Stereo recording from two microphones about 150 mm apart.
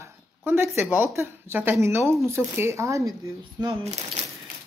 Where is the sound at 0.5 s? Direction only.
15° right (ahead or behind).